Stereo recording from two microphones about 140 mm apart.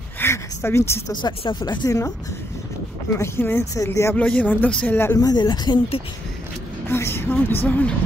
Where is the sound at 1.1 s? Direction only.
35° left (ahead or behind); by 5.1 s 15° left (ahead or behind).